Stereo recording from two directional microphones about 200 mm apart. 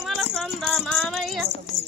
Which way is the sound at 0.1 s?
Centre (ahead or behind).